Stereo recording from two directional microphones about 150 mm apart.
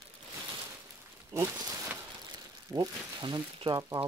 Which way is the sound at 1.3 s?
20° right (ahead or behind).